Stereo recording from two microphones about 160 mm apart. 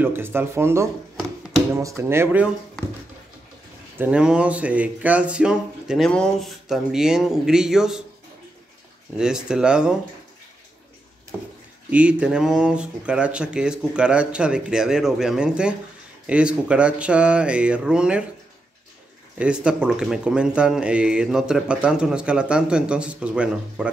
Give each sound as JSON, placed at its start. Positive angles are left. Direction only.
{"t": 0.0, "sound": "speech", "side_deg": -15}
{"t": 4.0, "sound": "speech", "side_deg": -5}
{"t": 9.2, "sound": "speech", "side_deg": -5}
{"t": 11.9, "sound": "speech", "side_deg": -5}
{"t": 19.3, "sound": "speech", "side_deg": -5}